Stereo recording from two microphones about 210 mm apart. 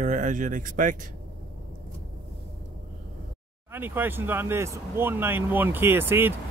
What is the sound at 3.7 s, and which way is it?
Speech, 10° right (ahead or behind).